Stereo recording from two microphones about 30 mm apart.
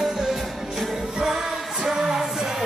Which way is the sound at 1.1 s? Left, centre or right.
Centre.